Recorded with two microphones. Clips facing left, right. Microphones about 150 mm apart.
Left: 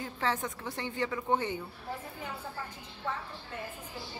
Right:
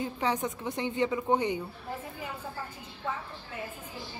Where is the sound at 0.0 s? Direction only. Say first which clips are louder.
Right 3 dB; 20° right (ahead or behind).